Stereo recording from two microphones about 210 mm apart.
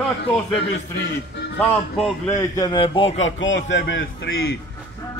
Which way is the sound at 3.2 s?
65° left (ahead or behind).